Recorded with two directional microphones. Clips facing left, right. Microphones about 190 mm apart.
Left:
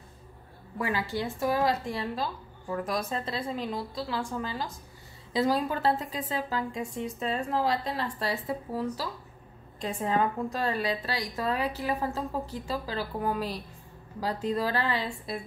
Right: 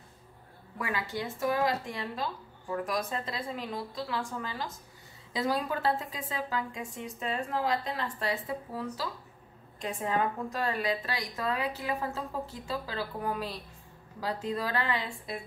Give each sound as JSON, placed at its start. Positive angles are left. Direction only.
{"t": 0.7, "sound": "a woman's voice", "side_deg": 30}